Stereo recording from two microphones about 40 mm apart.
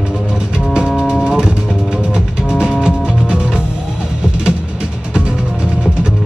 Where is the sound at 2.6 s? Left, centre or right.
Centre.